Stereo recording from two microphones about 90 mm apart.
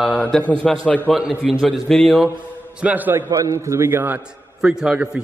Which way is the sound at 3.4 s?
35° right (ahead or behind).